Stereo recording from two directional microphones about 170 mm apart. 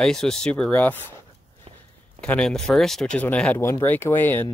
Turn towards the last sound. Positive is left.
turn(degrees=10)  # may be behind; listen again after turning